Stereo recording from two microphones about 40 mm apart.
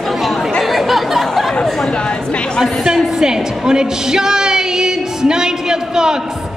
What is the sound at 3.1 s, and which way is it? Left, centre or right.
Speech, centre.